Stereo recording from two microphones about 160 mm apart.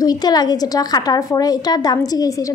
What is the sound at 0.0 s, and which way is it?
A woman's voice, 25° left (ahead or behind).